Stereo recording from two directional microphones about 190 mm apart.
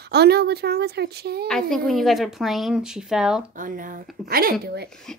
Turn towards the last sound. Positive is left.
turn(degrees=-60)  # may be behind; listen again after turning